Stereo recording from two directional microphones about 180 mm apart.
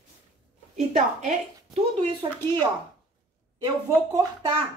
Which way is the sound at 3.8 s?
20° right (ahead or behind).